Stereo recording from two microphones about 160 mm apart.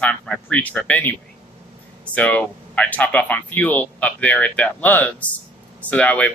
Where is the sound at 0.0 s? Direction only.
10° left (ahead or behind).